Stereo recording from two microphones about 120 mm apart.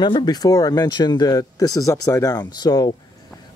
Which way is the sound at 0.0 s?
35° left (ahead or behind).